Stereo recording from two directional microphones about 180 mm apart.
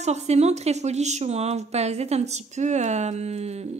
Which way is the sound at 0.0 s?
40° right (ahead or behind).